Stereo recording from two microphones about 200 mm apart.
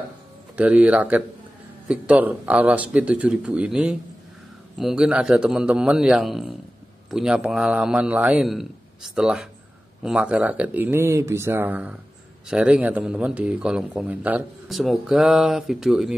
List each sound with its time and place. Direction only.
0.6 s speech: 5° right (ahead or behind)